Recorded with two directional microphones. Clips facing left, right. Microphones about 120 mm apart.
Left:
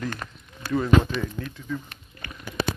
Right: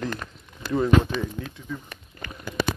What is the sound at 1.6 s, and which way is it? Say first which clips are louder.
Speech: left 2 dB; 10° right (ahead or behind).